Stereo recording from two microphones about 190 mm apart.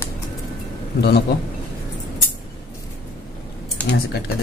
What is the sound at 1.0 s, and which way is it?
Speech, 55° left (ahead or behind).